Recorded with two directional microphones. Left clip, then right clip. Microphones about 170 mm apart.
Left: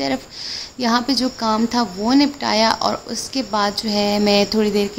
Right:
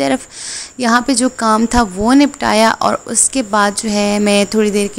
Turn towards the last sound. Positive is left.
turn(degrees=-25)  # may be behind; listen again after turning